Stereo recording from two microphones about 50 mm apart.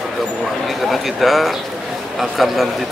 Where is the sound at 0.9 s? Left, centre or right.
Centre.